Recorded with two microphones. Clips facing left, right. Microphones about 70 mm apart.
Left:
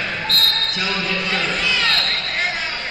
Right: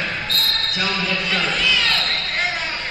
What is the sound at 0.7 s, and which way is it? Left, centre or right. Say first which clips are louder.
Speech: even; centre.